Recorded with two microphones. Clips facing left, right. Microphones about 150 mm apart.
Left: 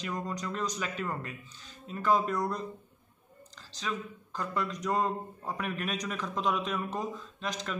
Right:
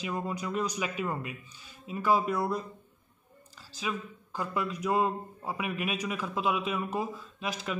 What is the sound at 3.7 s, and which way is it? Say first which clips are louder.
Speech: right 1 dB; 10° right (ahead or behind).